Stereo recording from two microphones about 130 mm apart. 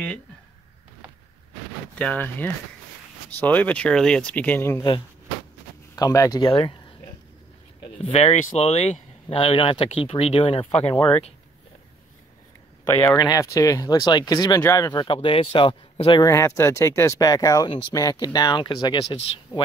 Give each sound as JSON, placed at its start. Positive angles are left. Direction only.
{"t": 2.0, "sound": "speech", "side_deg": 10}
{"t": 5.9, "sound": "speech", "side_deg": 25}
{"t": 7.8, "sound": "speech", "side_deg": 45}
{"t": 13.2, "sound": "speech", "side_deg": 25}
{"t": 16.3, "sound": "speech", "side_deg": 20}